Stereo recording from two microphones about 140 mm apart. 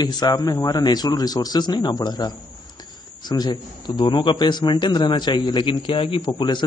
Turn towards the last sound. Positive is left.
turn(degrees=35)  # may be behind; listen again after turning